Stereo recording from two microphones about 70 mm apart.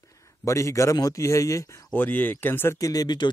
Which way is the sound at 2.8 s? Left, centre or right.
Left.